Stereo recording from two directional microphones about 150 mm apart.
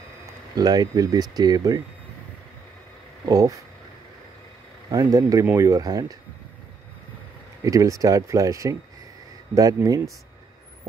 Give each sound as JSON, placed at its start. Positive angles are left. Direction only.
{"t": 0.6, "sound": "speech", "side_deg": -25}
{"t": 3.3, "sound": "speech", "side_deg": -20}
{"t": 4.9, "sound": "speech", "side_deg": -20}
{"t": 7.6, "sound": "speech", "side_deg": -20}